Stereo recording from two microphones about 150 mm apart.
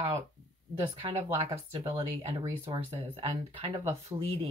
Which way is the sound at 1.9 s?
40° right (ahead or behind).